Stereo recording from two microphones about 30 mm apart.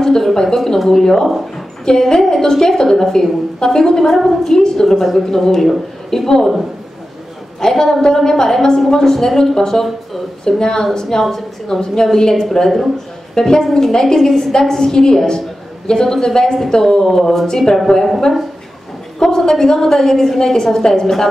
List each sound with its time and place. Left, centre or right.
0.0 s a woman's voice: centre
4.0 s a woman's voice: centre
7.6 s a woman's voice: centre
19.1 s a woman's voice: centre